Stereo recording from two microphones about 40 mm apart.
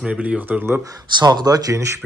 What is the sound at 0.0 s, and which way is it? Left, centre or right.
Speech, right.